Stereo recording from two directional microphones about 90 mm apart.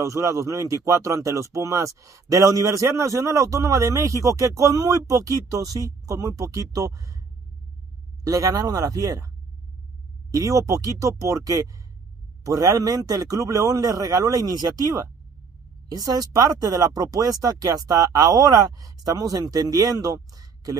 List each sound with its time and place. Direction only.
0.0 s speech: 35° right (ahead or behind)
8.2 s speech: 40° right (ahead or behind)
10.3 s speech: 35° right (ahead or behind)